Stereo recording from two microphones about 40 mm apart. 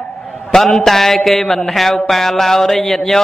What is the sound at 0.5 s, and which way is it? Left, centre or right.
A man's voice, centre.